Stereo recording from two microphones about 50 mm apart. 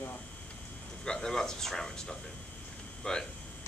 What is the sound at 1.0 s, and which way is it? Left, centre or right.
Speech, centre.